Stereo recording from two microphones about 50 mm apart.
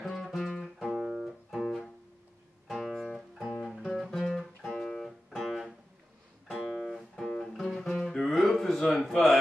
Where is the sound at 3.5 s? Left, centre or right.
Centre.